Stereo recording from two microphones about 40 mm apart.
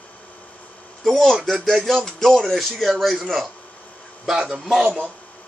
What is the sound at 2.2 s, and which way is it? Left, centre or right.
Speech, centre.